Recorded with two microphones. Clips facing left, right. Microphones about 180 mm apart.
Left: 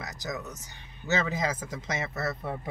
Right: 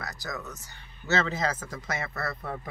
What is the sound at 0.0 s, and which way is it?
A man's voice, 20° left (ahead or behind).